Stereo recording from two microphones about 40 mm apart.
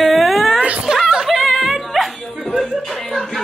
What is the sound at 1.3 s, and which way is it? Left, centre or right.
Music, centre.